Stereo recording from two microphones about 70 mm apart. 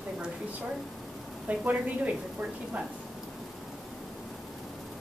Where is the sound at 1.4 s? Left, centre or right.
Right.